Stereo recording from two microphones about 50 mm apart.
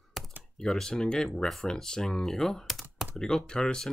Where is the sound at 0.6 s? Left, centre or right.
Centre.